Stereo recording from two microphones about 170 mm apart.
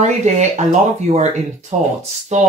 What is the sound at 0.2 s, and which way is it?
Speech, 40° right (ahead or behind).